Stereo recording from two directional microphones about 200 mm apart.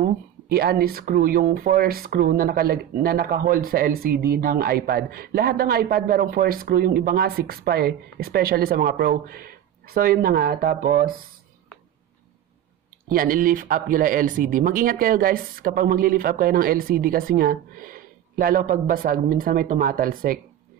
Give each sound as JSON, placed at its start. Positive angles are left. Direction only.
{"t": 0.5, "sound": "speech", "side_deg": -50}
{"t": 13.1, "sound": "speech", "side_deg": -45}